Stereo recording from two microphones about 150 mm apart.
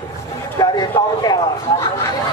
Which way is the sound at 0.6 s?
25° left (ahead or behind).